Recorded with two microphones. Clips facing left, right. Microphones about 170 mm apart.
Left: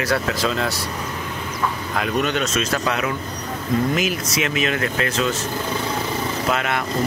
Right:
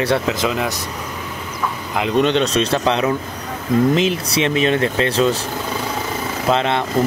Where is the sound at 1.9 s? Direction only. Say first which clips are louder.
Right 7 dB; 25° right (ahead or behind).